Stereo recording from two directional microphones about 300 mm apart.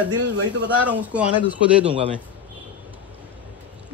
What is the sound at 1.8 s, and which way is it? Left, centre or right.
Speech, centre.